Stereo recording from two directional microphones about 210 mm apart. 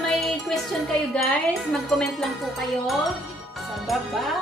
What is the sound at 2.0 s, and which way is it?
Music, centre (ahead or behind).